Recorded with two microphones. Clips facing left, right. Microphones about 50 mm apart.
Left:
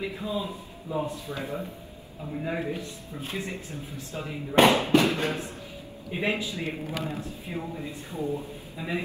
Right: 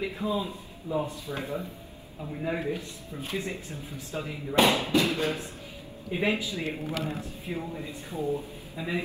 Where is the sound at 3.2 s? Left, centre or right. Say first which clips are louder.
Right 1 dB; left.